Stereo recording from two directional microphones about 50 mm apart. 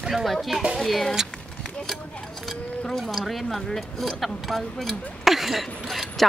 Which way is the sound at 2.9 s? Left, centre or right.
Centre.